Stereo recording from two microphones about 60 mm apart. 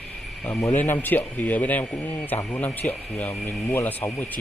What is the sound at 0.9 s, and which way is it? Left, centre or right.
Speech, left.